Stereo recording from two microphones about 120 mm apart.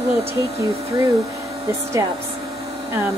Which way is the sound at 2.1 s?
50° right (ahead or behind).